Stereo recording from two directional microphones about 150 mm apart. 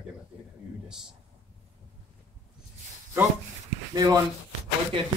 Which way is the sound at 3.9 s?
25° right (ahead or behind).